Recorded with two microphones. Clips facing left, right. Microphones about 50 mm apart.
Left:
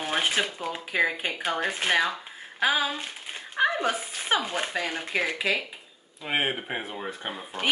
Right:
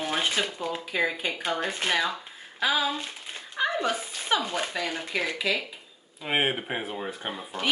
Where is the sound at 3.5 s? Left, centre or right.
Left.